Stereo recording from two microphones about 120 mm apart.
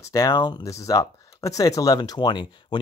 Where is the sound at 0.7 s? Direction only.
25° left (ahead or behind).